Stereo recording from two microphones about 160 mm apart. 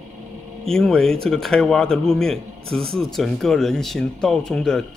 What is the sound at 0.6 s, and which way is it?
Speech, centre (ahead or behind).